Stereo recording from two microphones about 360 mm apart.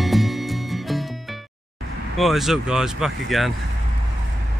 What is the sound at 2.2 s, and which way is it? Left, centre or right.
Speech, centre.